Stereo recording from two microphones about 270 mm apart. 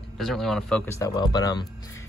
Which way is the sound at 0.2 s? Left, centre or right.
Centre.